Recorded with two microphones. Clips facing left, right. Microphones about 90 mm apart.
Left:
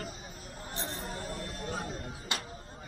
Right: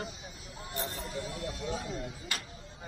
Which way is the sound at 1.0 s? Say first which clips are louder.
Right 1 dB; 40° left (ahead or behind).